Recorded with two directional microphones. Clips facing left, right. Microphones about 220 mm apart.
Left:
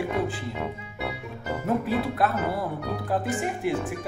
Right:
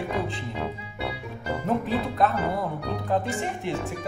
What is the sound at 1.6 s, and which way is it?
Speech, centre (ahead or behind).